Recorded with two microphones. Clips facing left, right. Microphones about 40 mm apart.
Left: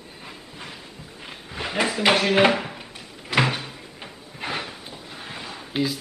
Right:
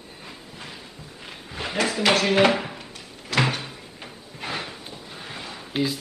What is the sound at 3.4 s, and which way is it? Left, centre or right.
Cupboard open or close, centre.